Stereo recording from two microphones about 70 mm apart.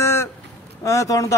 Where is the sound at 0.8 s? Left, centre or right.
Left.